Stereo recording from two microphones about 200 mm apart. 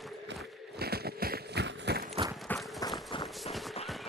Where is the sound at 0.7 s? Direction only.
50° right (ahead or behind).